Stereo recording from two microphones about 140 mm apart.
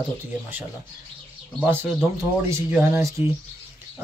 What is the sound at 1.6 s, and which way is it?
Speech, 15° right (ahead or behind).